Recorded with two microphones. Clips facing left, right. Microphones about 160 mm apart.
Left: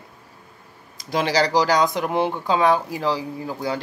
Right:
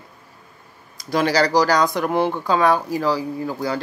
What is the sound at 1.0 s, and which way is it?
Speech, 20° left (ahead or behind).